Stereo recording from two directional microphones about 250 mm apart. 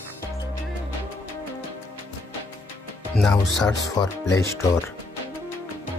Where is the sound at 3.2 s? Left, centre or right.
Centre.